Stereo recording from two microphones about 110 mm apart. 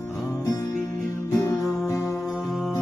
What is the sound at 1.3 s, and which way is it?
Music, 25° left (ahead or behind).